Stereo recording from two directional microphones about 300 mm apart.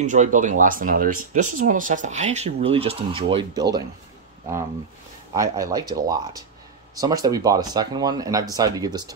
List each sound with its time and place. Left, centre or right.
0.0 s speech: right
5.3 s speech: centre